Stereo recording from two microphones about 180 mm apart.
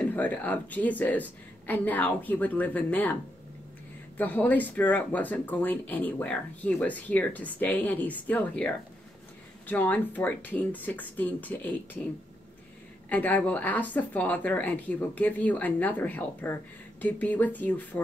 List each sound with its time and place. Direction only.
0.0 s speech: 10° left (ahead or behind)
4.2 s speech: 10° left (ahead or behind)
13.1 s speech: 10° left (ahead or behind)